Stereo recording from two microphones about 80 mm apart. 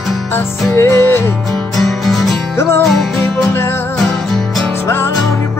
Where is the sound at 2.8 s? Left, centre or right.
Centre.